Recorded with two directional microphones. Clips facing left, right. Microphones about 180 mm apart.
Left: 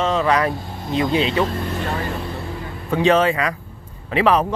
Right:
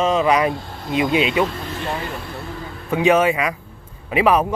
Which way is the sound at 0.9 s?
15° right (ahead or behind).